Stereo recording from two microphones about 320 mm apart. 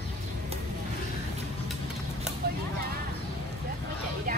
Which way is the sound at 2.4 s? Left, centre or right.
Right.